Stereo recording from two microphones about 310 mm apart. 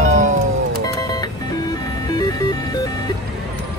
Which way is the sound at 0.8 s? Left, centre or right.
Centre.